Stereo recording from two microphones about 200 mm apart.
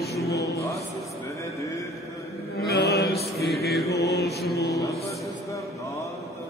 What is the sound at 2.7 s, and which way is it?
Chant, 55° left (ahead or behind).